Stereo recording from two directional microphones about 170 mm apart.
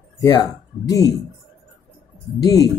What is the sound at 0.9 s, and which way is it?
Speech, 20° left (ahead or behind).